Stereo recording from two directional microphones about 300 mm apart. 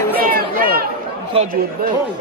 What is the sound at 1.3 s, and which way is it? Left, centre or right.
Speech, centre.